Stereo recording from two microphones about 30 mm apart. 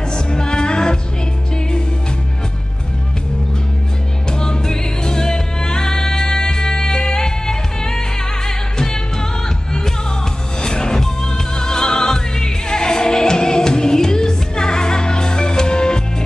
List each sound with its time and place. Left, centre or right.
0.1 s music: left
4.3 s music: left
10.6 s music: left